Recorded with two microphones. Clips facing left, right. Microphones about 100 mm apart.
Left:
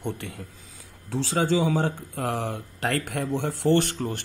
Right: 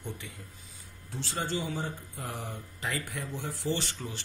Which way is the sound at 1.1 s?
90° left.